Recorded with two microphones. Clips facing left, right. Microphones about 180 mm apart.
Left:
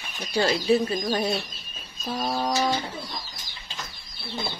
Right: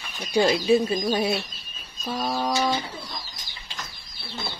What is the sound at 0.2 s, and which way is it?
Speech, 15° right (ahead or behind).